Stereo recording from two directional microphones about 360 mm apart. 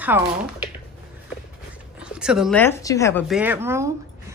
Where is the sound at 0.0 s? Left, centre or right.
Centre.